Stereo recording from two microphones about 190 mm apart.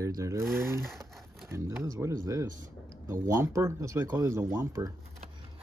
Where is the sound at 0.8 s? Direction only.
Centre (ahead or behind).